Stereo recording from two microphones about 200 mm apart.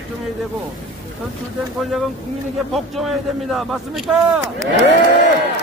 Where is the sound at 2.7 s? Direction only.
Centre (ahead or behind).